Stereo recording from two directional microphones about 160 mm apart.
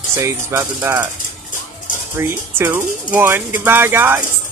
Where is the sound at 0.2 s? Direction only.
15° right (ahead or behind).